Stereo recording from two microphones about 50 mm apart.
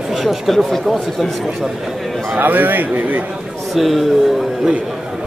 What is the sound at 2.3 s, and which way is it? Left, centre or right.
Speech, right.